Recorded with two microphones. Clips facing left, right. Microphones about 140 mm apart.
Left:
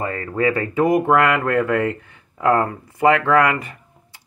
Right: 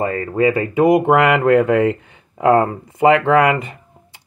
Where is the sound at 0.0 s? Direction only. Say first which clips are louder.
Right 4 dB; 20° right (ahead or behind).